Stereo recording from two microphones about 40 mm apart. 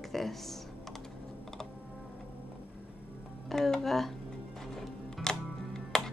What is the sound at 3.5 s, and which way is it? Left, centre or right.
Music, centre.